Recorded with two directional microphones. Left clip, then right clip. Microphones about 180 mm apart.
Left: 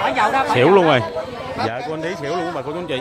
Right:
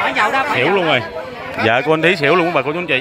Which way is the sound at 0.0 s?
45° right (ahead or behind).